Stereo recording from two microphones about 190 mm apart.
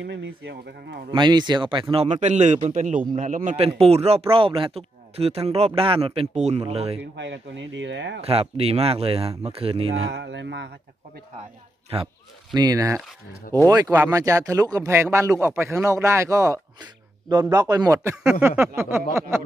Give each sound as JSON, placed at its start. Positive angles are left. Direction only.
{"t": 0.0, "sound": "speech", "side_deg": -75}
{"t": 1.1, "sound": "speech", "side_deg": -25}
{"t": 2.0, "sound": "a man's voice", "side_deg": -40}
{"t": 7.2, "sound": "speech", "side_deg": -70}
{"t": 8.2, "sound": "a man's voice", "side_deg": -30}
{"t": 10.0, "sound": "speech", "side_deg": -65}
{"t": 11.9, "sound": "a man's voice", "side_deg": -30}
{"t": 12.5, "sound": "speech", "side_deg": -20}
{"t": 18.2, "sound": "a sound", "side_deg": -5}
{"t": 18.8, "sound": "speech", "side_deg": -10}